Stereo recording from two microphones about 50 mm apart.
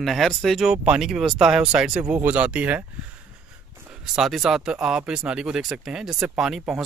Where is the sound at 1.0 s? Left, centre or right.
Centre.